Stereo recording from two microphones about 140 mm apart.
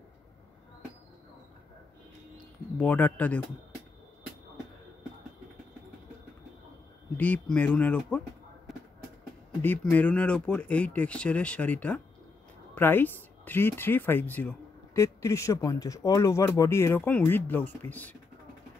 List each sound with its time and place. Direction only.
2.8 s speech: 10° left (ahead or behind)
7.2 s speech: 10° left (ahead or behind)
9.6 s speech: 15° left (ahead or behind)